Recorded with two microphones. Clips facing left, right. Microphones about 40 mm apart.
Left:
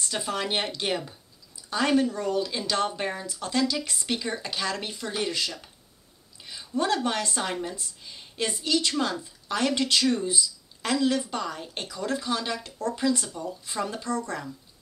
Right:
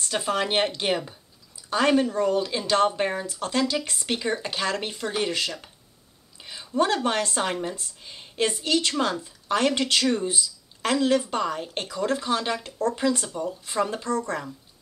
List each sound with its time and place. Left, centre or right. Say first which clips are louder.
0.0 s a woman's voice: right 4 dB; right